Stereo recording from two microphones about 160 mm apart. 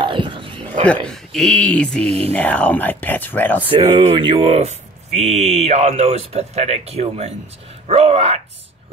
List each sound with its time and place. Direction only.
0.0 s a sound: 30° right (ahead or behind)
0.8 s speech: 5° left (ahead or behind)
2.0 s speech: 40° right (ahead or behind)
2.3 s speech: 10° left (ahead or behind)
3.7 s speech: 35° right (ahead or behind)